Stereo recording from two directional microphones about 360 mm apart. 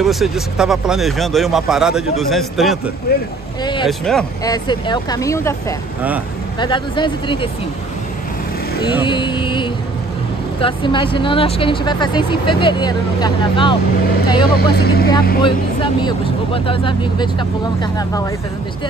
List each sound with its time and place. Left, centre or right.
0.0 s speech: centre
3.1 s speech: left
3.6 s vehicle: centre
4.0 s speech: centre
8.8 s speech: centre
14.5 s speech: left
15.4 s speech: centre